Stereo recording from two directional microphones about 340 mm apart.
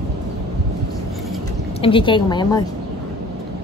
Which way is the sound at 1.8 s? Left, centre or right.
Centre.